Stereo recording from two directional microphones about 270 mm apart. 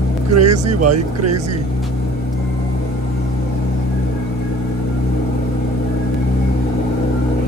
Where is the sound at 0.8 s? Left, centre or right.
Right.